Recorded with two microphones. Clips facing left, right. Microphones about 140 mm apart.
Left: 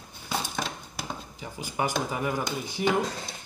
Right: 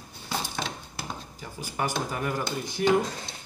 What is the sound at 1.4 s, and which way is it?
Speech, 15° left (ahead or behind).